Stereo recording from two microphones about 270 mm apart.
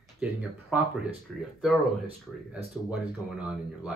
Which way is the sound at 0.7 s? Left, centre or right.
Centre.